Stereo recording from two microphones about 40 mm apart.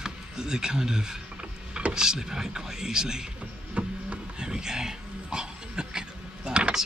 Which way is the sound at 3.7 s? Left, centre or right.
Right.